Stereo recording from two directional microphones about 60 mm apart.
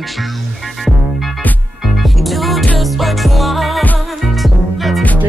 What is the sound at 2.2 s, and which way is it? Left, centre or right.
Music, centre.